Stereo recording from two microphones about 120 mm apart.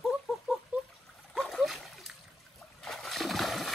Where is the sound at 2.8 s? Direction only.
Centre (ahead or behind).